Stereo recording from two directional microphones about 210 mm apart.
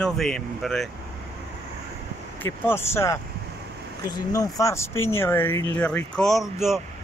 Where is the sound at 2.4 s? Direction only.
10° left (ahead or behind).